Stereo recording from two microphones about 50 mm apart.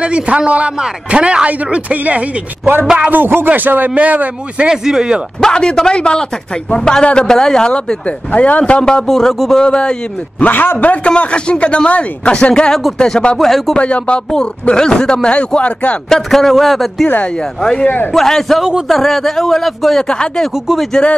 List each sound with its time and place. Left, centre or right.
0.0 s a man's voice: right
3.1 s speech: right
4.6 s speech: centre
5.4 s speech: centre
8.3 s speech: left
10.4 s a man's voice: left
11.1 s speech: left
13.4 s speech: centre
13.7 s speech: left
16.1 s a man's voice: centre
17.6 s a man's voice: centre
20.0 s speech: centre